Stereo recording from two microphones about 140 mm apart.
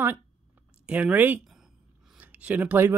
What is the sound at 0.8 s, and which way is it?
Speech, 10° right (ahead or behind).